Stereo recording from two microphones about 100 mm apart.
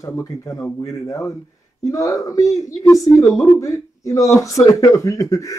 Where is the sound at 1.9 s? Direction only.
35° left (ahead or behind).